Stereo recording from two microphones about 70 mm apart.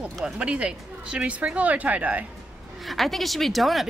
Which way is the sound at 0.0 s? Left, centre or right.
Centre.